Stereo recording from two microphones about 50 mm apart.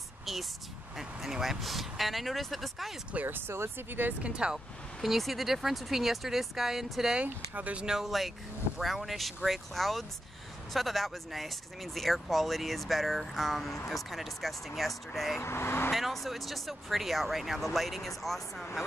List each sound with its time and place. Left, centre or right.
0.2 s a sound: centre
0.9 s speech: centre
3.3 s speech: right
4.2 s speech: centre
5.0 s speech: centre
7.5 s speech: right
7.8 s speech: centre
15.4 s speech: left
15.9 s speech: centre